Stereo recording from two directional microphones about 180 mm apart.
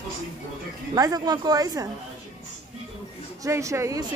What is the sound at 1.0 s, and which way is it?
Speech, 20° right (ahead or behind).